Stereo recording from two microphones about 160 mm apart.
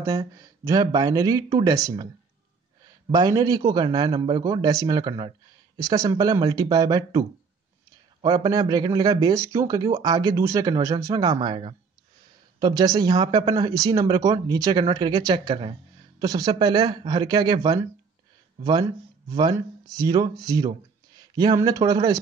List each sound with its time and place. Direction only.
0.0 s a man's voice: 20° right (ahead or behind)
3.1 s a man's voice: 25° right (ahead or behind)
20.0 s a man's voice: 25° right (ahead or behind)